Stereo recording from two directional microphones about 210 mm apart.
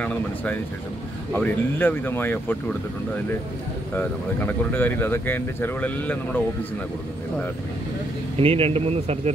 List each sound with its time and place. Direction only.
0.0 s speech: 5° left (ahead or behind)
3.9 s speech: 10° left (ahead or behind)
8.4 s speech: 25° right (ahead or behind)